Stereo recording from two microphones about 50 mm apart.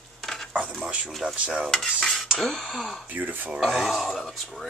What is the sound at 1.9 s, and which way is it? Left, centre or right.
Cutlery, centre.